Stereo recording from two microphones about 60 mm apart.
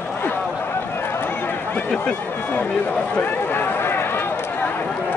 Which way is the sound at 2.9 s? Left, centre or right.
Left.